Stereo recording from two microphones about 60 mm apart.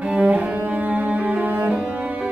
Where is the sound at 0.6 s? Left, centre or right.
Right.